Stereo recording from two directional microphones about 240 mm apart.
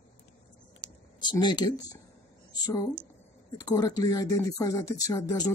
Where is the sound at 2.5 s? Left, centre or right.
Centre.